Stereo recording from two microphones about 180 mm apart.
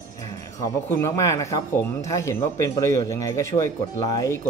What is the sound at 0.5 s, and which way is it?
Speech, 15° left (ahead or behind).